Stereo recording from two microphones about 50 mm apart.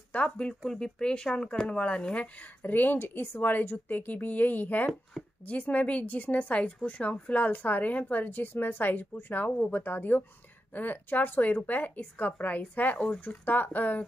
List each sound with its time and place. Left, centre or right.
0.1 s a woman's voice: left
0.7 s speech: centre
2.6 s a woman's voice: left
5.2 s speech: centre
5.5 s a woman's voice: left